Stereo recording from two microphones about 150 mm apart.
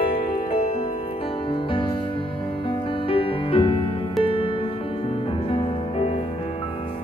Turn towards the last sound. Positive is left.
turn(degrees=40)  # may be behind; listen again after turning